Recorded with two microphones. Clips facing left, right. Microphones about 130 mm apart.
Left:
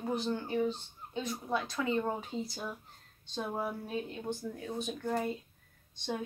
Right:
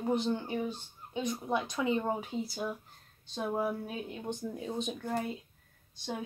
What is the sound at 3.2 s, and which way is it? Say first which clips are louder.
Speech: right 3 dB; 5° right (ahead or behind).